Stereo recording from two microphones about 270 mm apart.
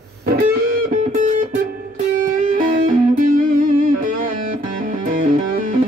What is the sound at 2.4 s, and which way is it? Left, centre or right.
Music, right.